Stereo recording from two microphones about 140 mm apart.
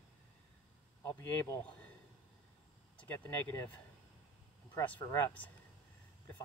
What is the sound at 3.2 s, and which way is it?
Speech, 10° left (ahead or behind).